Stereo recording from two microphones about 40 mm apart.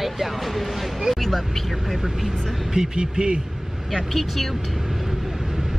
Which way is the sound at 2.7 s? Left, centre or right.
Centre.